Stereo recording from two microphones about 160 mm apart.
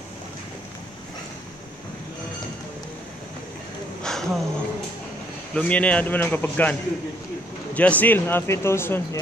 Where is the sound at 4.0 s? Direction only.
5° left (ahead or behind).